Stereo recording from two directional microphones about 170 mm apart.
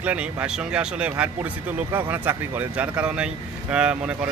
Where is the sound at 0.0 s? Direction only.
10° right (ahead or behind).